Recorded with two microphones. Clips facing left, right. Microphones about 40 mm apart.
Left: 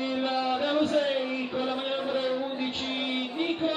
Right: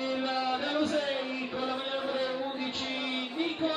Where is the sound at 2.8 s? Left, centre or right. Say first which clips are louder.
Left 3 dB; left.